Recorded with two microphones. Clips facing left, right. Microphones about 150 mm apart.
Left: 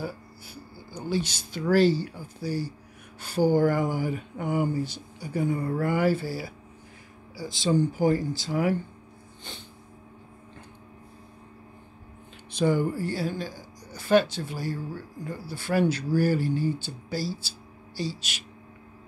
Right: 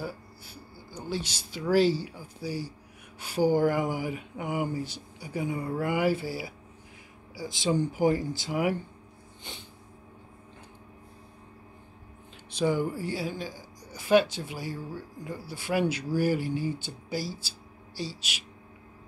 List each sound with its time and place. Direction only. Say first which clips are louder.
0.0 s speech: left 2 dB; centre (ahead or behind); by 8.7 s 15° right (ahead or behind)
12.5 s speech: left 3 dB; 5° right (ahead or behind)
17.9 s speech: left 4 dB; 5° right (ahead or behind)